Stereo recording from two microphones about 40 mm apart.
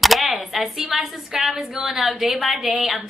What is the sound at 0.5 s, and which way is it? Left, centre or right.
A woman's voice, centre.